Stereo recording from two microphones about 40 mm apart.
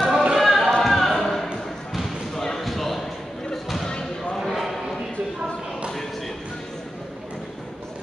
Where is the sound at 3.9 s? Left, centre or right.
Left.